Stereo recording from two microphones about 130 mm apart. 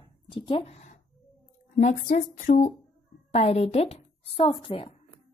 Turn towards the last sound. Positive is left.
turn(degrees=45)  # may be behind; listen again after turning